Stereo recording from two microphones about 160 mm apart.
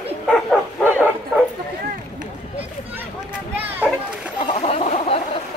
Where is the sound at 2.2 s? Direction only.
10° right (ahead or behind).